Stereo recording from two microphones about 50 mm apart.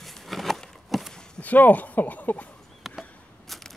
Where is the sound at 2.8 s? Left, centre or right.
Centre.